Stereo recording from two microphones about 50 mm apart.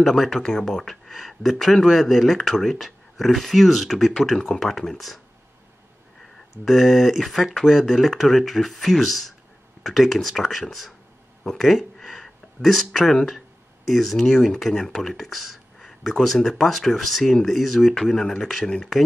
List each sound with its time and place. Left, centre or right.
0.0 s speech: centre
6.6 s speech: centre
12.2 s a sound: centre
13.8 s speech: centre